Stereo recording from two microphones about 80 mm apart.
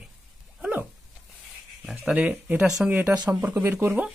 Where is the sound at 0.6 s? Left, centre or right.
Centre.